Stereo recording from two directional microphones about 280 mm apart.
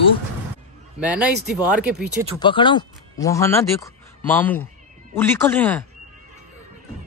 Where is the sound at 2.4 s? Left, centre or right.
Centre.